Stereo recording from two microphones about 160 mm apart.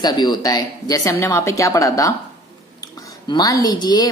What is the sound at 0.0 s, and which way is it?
A woman's voice, 25° left (ahead or behind).